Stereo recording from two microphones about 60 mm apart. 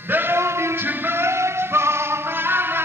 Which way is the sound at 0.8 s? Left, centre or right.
Right.